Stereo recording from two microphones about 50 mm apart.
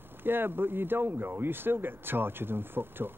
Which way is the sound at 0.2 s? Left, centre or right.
Right.